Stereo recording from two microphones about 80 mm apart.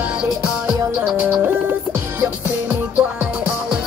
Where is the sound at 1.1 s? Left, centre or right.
Right.